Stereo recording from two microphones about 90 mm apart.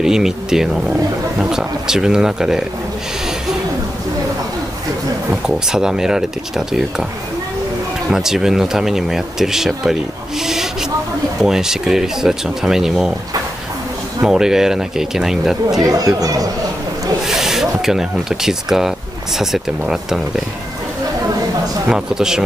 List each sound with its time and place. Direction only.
0.0 s speech: 5° right (ahead or behind)
5.3 s speech: 10° right (ahead or behind)
8.1 s speech: 5° right (ahead or behind)
14.2 s speech: 5° right (ahead or behind)
15.8 s a man's voice: 40° right (ahead or behind)
17.3 s speech: 5° right (ahead or behind)
21.8 s speech: 5° right (ahead or behind)